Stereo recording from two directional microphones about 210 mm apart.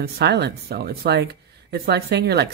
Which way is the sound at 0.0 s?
55° right (ahead or behind).